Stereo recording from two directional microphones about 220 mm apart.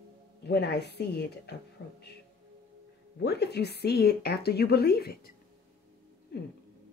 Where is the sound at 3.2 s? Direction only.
50° left (ahead or behind).